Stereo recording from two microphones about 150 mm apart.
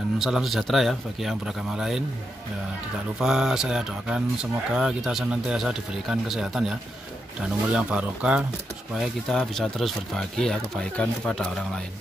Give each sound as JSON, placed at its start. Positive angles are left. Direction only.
{"t": 0.2, "sound": "speech", "side_deg": 0}
{"t": 3.2, "sound": "speech", "side_deg": -5}
{"t": 7.7, "sound": "speech", "side_deg": -5}